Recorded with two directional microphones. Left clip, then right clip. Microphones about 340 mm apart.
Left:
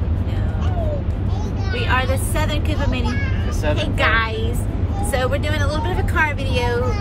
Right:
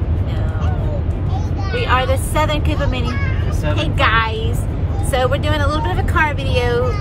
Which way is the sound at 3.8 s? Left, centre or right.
Centre.